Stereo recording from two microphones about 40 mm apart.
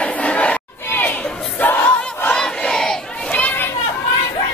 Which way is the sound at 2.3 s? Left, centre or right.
Centre.